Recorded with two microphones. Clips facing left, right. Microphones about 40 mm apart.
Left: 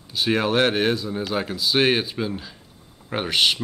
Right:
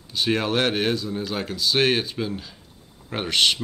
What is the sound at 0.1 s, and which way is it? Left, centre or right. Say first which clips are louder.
Speech: left 2 dB; centre.